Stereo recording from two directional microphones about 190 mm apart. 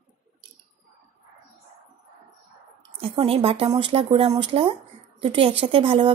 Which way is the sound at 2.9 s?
30° right (ahead or behind).